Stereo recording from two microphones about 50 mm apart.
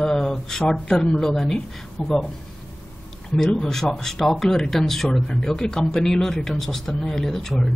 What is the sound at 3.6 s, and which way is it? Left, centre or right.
Speech, centre.